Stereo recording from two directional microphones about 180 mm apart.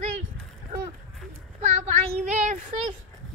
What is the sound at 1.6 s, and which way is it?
Speech, 40° right (ahead or behind).